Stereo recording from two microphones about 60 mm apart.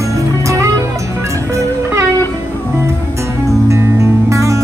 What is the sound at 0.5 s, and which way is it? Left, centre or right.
Music, right.